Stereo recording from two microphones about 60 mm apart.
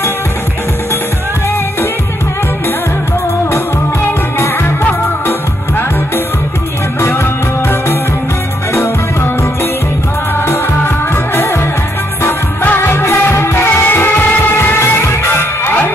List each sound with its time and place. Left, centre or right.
3.5 s music: left
7.0 s music: left